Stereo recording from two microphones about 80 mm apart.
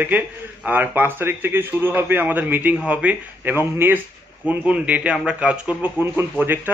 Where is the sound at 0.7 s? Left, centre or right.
Right.